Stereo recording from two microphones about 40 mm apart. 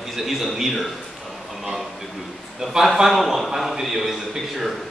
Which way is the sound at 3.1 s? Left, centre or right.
Centre.